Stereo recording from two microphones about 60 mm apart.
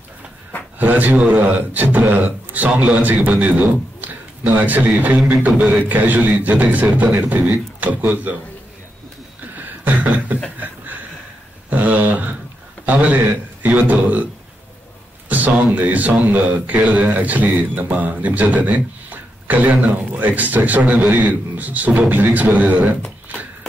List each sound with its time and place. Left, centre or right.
0.7 s speech: right
9.6 s beatboxing: right
11.7 s a sound: right
12.8 s a man's voice: right